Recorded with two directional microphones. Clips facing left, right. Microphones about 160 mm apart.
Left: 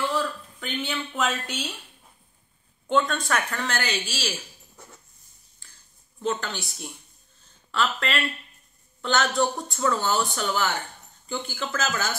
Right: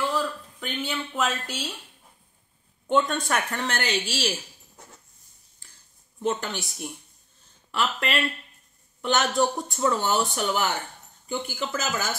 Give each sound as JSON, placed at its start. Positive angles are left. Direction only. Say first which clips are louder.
{"t": 0.1, "sound": "speech", "louder": "even", "side_deg": -5}
{"t": 2.9, "sound": "a woman's voice", "louder": "even", "side_deg": -15}
{"t": 6.2, "sound": "speech", "louder": "right 1 dB", "side_deg": -20}